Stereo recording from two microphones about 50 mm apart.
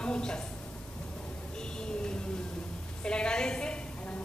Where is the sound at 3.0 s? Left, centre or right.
Centre.